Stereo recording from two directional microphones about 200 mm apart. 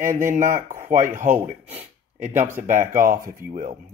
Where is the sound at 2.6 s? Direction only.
40° right (ahead or behind).